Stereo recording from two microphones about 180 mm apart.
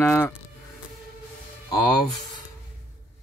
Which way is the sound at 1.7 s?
20° left (ahead or behind).